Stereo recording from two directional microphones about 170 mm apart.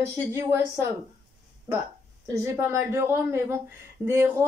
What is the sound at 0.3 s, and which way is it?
Speech, 15° right (ahead or behind).